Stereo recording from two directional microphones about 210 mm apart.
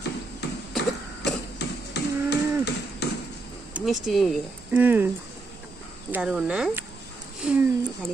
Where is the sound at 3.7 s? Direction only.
Centre (ahead or behind).